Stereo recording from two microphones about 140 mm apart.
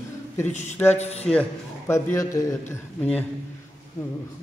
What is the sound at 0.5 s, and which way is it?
Speech, 55° left (ahead or behind).